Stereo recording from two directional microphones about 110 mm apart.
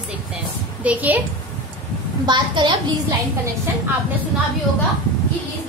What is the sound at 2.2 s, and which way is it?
Speech, 45° right (ahead or behind).